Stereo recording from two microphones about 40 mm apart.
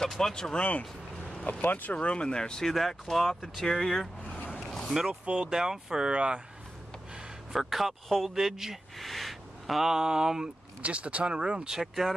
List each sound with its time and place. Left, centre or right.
0.2 s speech: centre
1.4 s speech: left
2.0 s speech: left
2.6 s speech: centre
4.6 s a sound: centre
5.2 s speech: right
5.5 s speech: centre
7.5 s speech: centre
8.9 s a sound: centre
9.8 s speech: centre
10.8 s speech: right; by 11.8 s centre
11.8 s speech: centre